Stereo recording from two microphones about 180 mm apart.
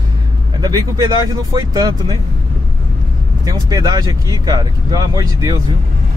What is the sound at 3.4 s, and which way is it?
Speech, 20° right (ahead or behind).